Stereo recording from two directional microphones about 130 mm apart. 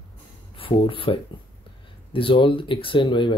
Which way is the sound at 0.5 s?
45° left (ahead or behind).